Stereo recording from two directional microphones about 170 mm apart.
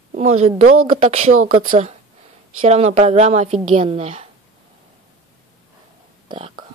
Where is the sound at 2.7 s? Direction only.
40° right (ahead or behind).